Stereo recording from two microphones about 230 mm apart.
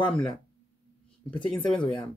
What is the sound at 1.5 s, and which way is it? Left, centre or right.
Speech, centre.